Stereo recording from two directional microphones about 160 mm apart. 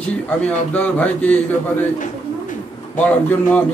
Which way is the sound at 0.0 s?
5° left (ahead or behind).